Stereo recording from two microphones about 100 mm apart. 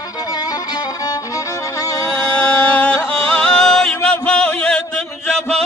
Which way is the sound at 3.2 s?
5° left (ahead or behind).